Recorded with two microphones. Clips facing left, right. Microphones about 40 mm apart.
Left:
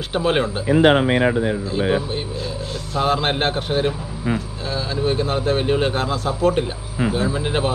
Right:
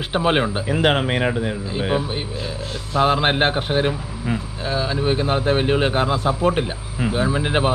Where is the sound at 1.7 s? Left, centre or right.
Centre.